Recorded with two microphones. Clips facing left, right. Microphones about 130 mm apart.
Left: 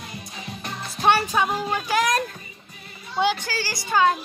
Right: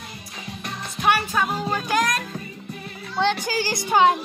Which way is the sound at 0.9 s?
25° left (ahead or behind).